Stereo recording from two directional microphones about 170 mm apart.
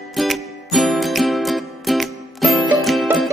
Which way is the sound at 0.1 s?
Centre (ahead or behind).